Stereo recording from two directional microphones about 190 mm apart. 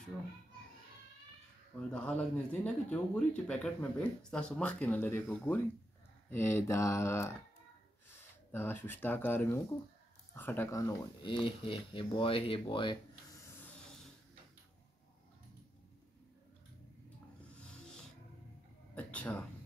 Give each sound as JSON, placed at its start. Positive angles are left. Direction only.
{"t": 2.0, "sound": "speech", "side_deg": 5}
{"t": 17.4, "sound": "snake", "side_deg": 5}
{"t": 18.9, "sound": "a sound", "side_deg": 5}